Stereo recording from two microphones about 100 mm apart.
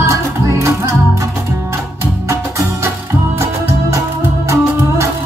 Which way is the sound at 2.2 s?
30° right (ahead or behind).